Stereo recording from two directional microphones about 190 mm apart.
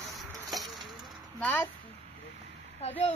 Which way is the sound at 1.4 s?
10° left (ahead or behind).